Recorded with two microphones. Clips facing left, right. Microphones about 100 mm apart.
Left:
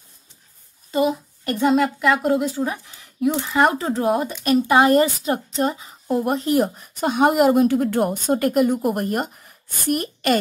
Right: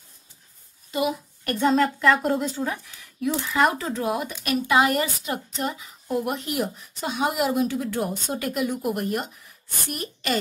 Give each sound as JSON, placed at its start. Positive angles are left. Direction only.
{"t": 1.4, "sound": "a woman's voice", "side_deg": 20}
{"t": 1.7, "sound": "speech", "side_deg": 5}
{"t": 2.7, "sound": "a woman's voice", "side_deg": 20}